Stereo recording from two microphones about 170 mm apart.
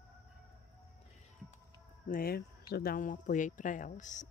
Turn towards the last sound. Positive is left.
turn(degrees=45)  # may be behind; listen again after turning